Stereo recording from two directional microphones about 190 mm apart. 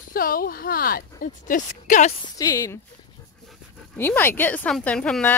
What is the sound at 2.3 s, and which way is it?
Speech, 15° left (ahead or behind).